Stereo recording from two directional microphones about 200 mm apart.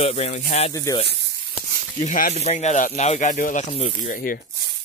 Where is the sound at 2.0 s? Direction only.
40° left (ahead or behind).